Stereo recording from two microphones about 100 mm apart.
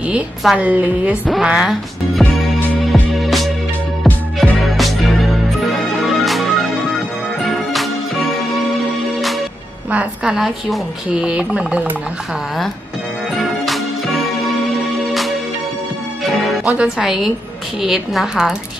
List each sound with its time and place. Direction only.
0.6 s a woman's voice: 15° right (ahead or behind)
2.9 s music: centre (ahead or behind)
9.8 s a woman's voice: 10° right (ahead or behind)
13.4 s music: centre (ahead or behind)
16.6 s speech: 10° right (ahead or behind)